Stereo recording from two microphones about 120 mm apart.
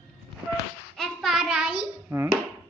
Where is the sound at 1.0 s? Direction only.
Centre (ahead or behind).